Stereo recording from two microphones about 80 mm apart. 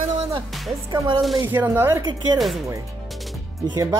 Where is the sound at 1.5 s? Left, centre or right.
Right.